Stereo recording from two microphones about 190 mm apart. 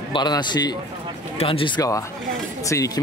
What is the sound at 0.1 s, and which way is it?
Speech, 25° left (ahead or behind).